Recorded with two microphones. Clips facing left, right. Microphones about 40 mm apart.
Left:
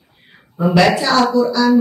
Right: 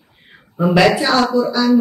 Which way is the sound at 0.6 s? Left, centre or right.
Centre.